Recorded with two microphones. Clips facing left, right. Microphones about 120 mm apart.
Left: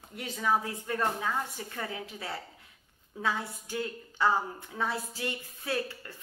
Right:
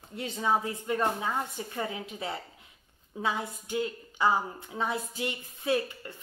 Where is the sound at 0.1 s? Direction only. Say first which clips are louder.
Right 1 dB; 25° right (ahead or behind).